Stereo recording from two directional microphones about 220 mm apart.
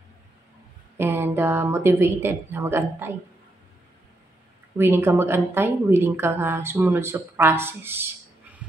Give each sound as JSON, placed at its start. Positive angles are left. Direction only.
{"t": 0.9, "sound": "a woman's voice", "side_deg": -10}
{"t": 4.7, "sound": "a woman's voice", "side_deg": -10}